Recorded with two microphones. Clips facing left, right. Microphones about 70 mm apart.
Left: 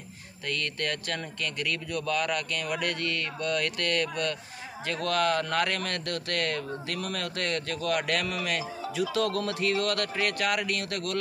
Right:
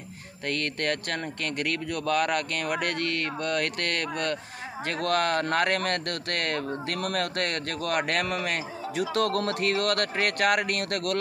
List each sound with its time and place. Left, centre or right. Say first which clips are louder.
0.5 s speech: right 3 dB; right
9.1 s speech: right 4 dB; right